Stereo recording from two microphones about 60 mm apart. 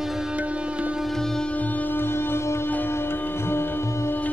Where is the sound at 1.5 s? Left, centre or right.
Left.